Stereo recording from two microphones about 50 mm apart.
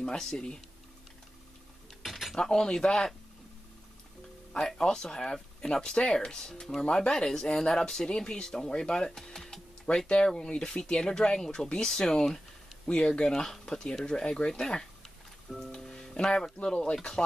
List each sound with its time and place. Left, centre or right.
0.0 s speech: centre
2.0 s a sound: centre
2.3 s speech: centre
4.5 s speech: centre
12.8 s speech: left
15.7 s music: centre
16.6 s speech: centre